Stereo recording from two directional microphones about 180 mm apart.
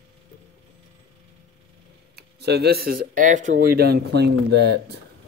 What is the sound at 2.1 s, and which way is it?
Speech, 65° right (ahead or behind).